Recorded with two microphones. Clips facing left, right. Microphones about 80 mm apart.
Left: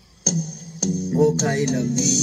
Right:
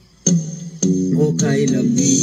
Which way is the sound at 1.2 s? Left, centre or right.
Centre.